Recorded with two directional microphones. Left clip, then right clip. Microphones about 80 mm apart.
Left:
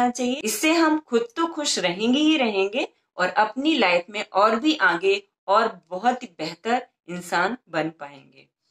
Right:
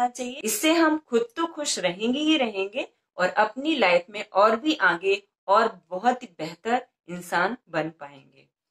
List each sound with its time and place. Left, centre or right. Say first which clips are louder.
0.0 s speech: left 4 dB; left